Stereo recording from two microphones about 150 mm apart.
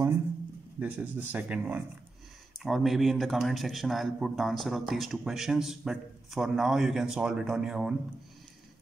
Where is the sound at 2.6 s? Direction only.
Centre (ahead or behind).